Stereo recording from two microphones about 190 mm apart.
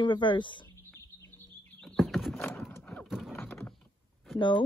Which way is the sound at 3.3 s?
10° left (ahead or behind).